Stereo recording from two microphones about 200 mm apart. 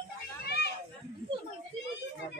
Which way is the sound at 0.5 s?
55° left (ahead or behind).